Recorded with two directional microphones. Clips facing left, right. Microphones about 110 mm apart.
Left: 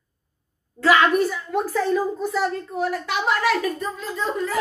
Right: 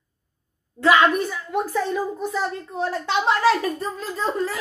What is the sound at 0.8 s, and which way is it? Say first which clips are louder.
A child's voice: even; 20° right (ahead or behind).